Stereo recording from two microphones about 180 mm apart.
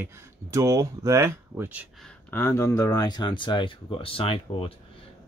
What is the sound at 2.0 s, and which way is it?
Speech, 10° left (ahead or behind).